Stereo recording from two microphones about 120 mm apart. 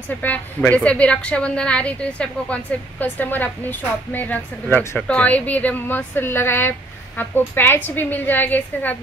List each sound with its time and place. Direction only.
0.2 s a woman's voice: 15° left (ahead or behind)